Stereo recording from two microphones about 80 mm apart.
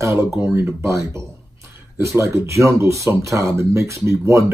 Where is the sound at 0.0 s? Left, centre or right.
Right.